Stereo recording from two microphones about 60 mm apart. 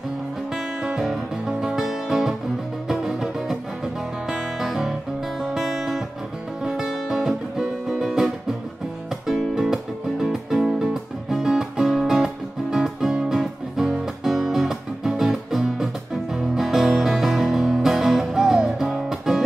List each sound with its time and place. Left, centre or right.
1.0 s music: centre